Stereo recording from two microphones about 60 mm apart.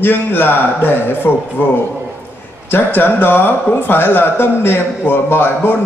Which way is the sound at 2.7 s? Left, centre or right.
Left.